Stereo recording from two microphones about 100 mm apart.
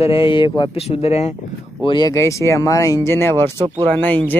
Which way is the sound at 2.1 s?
30° left (ahead or behind).